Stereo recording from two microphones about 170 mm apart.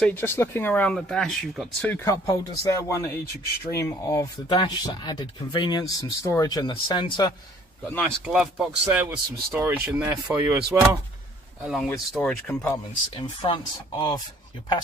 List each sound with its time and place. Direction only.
0.0 s speech: 10° left (ahead or behind)
8.0 s speech: 5° right (ahead or behind)
13.1 s speech: 30° left (ahead or behind)